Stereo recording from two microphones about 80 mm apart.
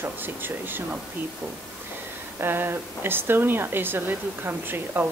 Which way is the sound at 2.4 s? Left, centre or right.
Right.